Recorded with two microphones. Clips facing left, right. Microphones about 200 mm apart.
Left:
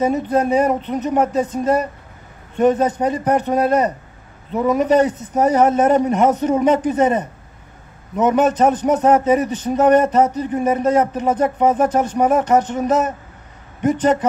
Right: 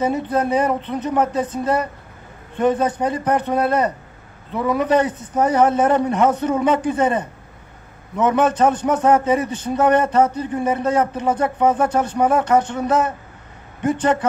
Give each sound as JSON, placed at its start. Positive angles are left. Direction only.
{"t": 0.0, "sound": "a man's voice", "side_deg": 20}